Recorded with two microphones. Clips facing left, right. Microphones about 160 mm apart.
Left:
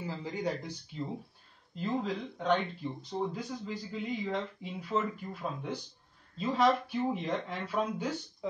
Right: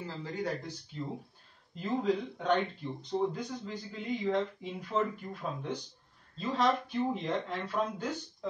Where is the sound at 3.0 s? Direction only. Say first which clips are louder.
Right 5 dB; 5° left (ahead or behind).